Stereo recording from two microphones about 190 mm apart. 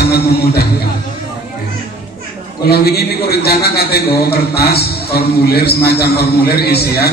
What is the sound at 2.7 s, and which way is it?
A man's voice, 55° left (ahead or behind).